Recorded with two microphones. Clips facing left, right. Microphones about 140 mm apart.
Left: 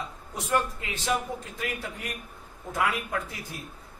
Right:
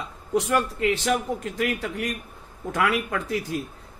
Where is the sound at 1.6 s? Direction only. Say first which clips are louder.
Right 8 dB; 90° right.